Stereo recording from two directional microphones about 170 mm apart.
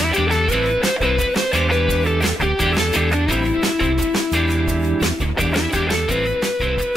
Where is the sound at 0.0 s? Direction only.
Centre (ahead or behind).